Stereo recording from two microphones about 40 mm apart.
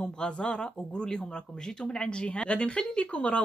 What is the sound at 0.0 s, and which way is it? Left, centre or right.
Speech, left.